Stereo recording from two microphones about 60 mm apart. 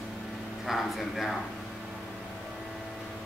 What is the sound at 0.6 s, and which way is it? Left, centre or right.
Speech, centre.